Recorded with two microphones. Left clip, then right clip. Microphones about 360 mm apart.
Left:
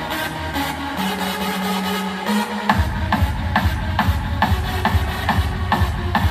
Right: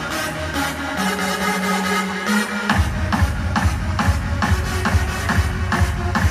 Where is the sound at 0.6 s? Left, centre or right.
Left.